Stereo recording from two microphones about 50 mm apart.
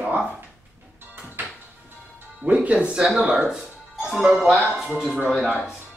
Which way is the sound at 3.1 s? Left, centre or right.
Centre.